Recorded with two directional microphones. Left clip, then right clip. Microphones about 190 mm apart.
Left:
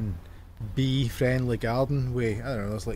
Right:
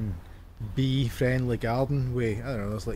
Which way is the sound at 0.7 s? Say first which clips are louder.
Left 1 dB; 15° left (ahead or behind).